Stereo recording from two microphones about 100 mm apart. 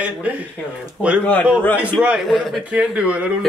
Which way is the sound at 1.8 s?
10° right (ahead or behind).